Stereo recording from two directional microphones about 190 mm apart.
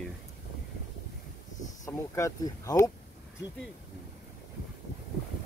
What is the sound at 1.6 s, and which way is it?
Speech, 15° left (ahead or behind).